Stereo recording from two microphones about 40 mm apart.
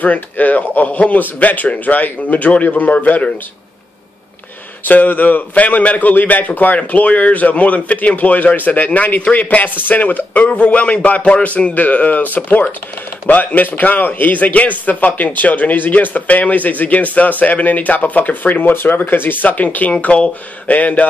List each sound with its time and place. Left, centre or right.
0.0 s speech: left
2.8 s a man's voice: left
4.8 s a man's voice: left
10.5 s a man's voice: left